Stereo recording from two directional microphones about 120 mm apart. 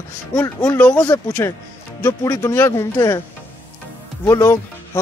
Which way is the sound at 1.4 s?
25° left (ahead or behind).